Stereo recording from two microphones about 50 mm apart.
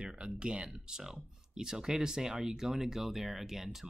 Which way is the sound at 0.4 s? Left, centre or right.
Centre.